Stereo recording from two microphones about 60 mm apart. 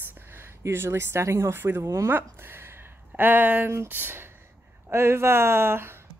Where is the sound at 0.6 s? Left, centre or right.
Right.